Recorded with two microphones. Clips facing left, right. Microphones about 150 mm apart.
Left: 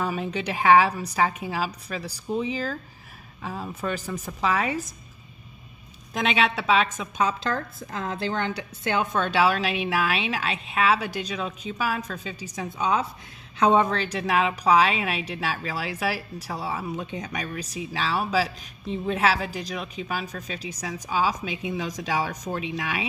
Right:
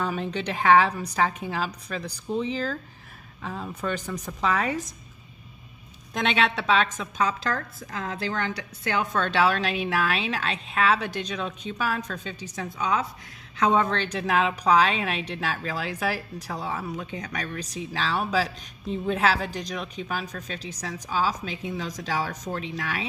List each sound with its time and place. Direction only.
0.0 s a woman's voice: 5° left (ahead or behind)
6.1 s speech: 5° left (ahead or behind)
7.2 s a woman's voice: 20° left (ahead or behind)
9.3 s a woman's voice: 5° left (ahead or behind)
13.8 s a woman's voice: 5° left (ahead or behind)
16.8 s speech: 20° left (ahead or behind)